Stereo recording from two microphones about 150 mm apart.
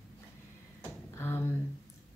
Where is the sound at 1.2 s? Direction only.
15° left (ahead or behind).